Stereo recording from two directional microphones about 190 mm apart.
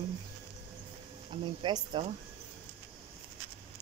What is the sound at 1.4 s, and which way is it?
Speech, 25° right (ahead or behind).